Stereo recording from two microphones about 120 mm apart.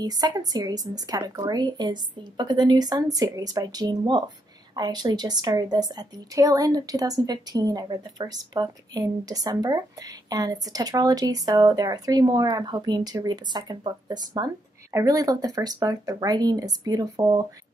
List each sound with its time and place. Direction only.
0.0 s a woman's voice: 35° right (ahead or behind)